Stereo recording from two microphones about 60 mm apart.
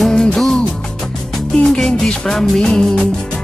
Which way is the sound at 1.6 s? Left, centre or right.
Centre.